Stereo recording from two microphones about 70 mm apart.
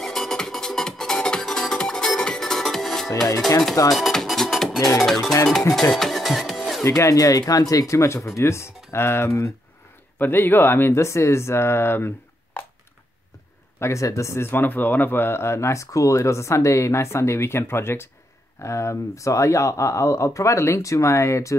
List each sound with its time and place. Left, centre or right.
0.0 s music: centre
5.8 s speech: centre
6.8 s speech: left
10.1 s speech: left
13.7 s speech: left